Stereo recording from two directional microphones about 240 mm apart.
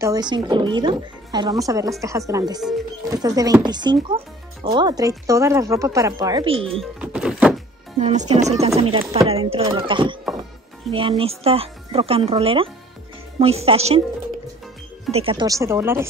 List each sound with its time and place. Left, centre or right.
0.0 s speech: centre
6.8 s music: centre
8.0 s speech: right
15.0 s speech: right